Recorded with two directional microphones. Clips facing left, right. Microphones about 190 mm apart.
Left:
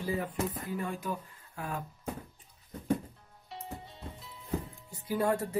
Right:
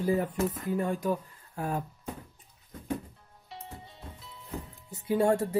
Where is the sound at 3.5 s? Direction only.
Centre (ahead or behind).